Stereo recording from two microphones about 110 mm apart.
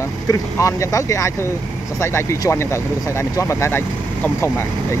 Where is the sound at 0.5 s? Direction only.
25° left (ahead or behind).